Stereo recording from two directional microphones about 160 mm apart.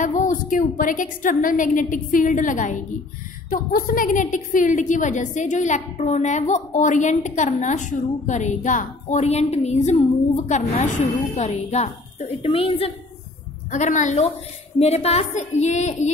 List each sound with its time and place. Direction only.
0.0 s a woman's voice: 55° left (ahead or behind); by 12.9 s 35° left (ahead or behind)
13.7 s a woman's voice: 50° left (ahead or behind)